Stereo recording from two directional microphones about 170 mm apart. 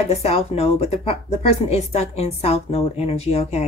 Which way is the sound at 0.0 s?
40° left (ahead or behind).